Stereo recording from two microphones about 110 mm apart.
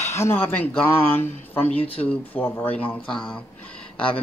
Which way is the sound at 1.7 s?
60° left (ahead or behind).